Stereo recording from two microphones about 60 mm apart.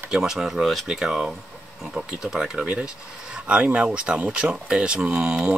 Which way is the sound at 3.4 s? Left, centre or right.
Centre.